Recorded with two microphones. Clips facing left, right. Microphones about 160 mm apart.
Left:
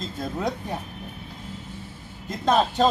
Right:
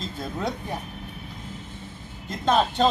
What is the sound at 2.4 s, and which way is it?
Speech, centre (ahead or behind).